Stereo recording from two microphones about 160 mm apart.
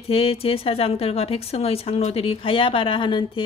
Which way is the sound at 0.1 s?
35° left (ahead or behind).